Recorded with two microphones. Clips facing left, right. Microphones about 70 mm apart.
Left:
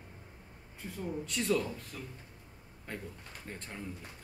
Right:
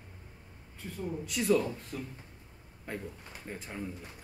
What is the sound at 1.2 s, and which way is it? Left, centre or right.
Speech, centre.